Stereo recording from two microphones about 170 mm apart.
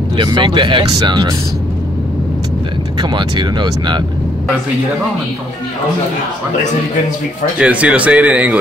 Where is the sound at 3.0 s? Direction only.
25° right (ahead or behind).